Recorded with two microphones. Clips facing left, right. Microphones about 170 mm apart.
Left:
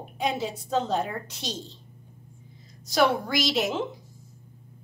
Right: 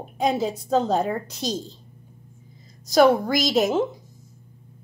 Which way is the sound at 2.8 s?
40° right (ahead or behind).